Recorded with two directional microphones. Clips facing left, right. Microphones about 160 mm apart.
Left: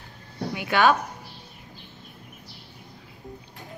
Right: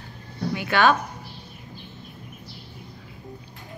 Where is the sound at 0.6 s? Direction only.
10° left (ahead or behind).